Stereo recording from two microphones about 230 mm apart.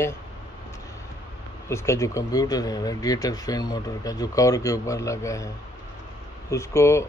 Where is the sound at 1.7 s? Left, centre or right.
Centre.